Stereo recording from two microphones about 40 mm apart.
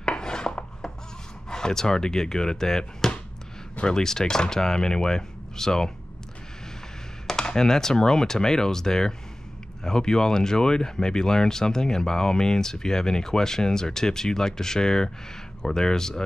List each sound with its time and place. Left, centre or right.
0.0 s filing: centre
1.5 s speech: centre
7.2 s speech: centre